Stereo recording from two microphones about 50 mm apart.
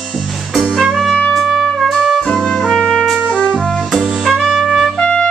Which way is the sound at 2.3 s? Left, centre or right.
Centre.